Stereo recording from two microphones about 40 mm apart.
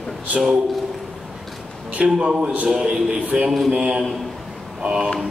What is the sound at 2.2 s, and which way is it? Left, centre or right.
A man's voice, right.